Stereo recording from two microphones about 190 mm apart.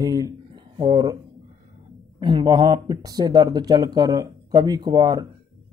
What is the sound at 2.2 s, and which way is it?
Speech, 25° right (ahead or behind).